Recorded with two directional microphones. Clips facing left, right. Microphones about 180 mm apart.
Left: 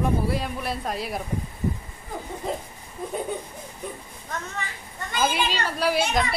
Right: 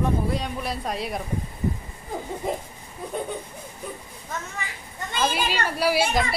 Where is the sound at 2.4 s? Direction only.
15° right (ahead or behind).